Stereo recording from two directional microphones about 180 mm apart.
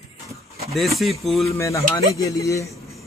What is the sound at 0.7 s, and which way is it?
Speech, centre (ahead or behind).